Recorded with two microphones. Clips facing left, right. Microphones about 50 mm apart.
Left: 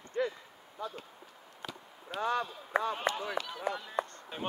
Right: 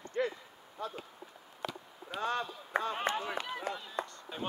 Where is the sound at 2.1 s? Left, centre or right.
Left.